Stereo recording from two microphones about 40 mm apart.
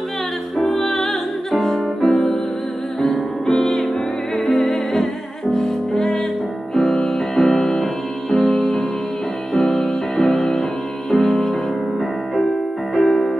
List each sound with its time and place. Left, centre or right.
0.6 s music: centre
2.0 s music: centre
12.9 s music: centre